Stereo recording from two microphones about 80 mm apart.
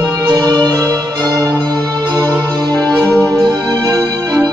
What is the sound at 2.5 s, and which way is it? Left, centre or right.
Music, right.